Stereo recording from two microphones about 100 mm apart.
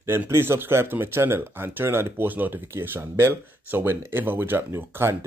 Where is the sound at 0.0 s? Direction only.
25° right (ahead or behind).